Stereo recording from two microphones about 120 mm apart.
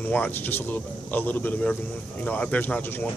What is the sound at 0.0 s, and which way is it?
Speech, 15° left (ahead or behind).